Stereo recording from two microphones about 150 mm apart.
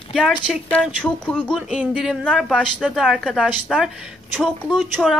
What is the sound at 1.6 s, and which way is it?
Speech, 5° right (ahead or behind).